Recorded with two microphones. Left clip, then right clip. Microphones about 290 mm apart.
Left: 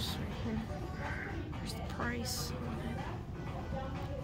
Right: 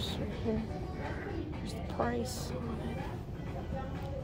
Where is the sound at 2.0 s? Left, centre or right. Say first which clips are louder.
Right 6 dB; centre.